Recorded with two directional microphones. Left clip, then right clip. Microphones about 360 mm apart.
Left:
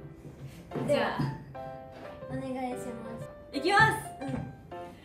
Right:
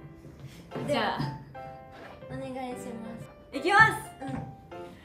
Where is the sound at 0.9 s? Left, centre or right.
Right.